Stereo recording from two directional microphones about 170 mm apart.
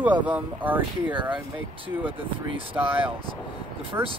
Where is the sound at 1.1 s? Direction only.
30° right (ahead or behind).